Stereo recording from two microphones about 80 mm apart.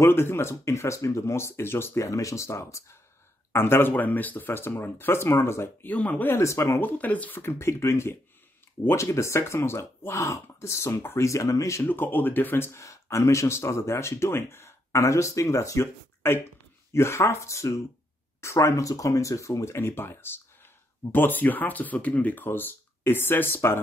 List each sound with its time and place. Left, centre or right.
0.0 s speech: left
5.9 s speech: centre
6.2 s speech: left
6.8 s speech: left
11.9 s speech: left